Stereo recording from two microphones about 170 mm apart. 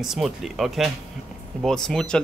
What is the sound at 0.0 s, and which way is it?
Speech, centre (ahead or behind).